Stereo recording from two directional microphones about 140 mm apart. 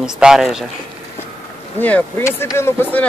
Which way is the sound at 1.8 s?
15° left (ahead or behind).